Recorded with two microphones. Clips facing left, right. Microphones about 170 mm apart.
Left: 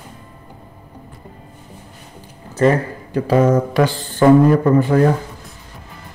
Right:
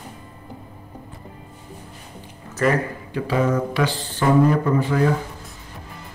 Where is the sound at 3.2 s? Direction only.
45° left (ahead or behind).